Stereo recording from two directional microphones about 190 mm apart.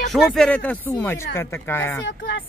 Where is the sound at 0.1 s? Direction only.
Centre (ahead or behind).